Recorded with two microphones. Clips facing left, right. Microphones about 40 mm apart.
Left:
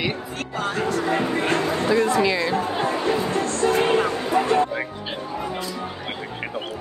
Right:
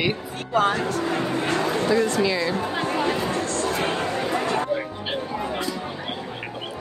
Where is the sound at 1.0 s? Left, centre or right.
Left.